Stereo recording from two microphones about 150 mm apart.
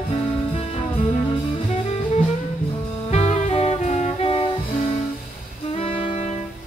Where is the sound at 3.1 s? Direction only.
45° left (ahead or behind).